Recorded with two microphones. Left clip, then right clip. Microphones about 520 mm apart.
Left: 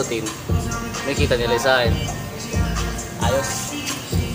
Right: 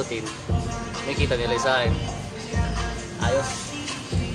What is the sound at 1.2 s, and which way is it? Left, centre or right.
Speech, right.